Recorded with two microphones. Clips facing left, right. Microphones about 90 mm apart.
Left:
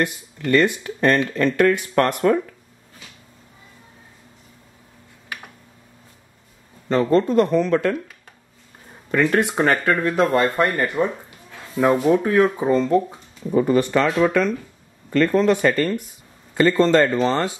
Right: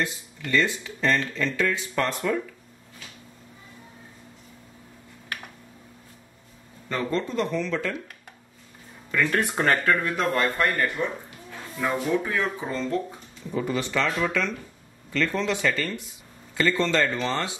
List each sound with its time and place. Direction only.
0.0 s speech: 60° left (ahead or behind)
7.1 s speech: 50° left (ahead or behind)
9.2 s speech: 20° left (ahead or behind)
11.0 s speech: 40° left (ahead or behind)